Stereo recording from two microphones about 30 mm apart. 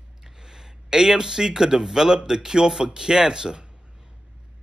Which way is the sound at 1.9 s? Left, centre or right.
Right.